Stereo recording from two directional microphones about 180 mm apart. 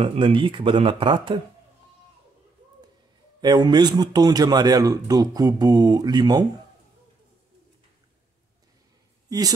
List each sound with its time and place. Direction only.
0.0 s speech: 30° right (ahead or behind)
3.3 s speech: 25° right (ahead or behind)
9.3 s speech: 20° right (ahead or behind)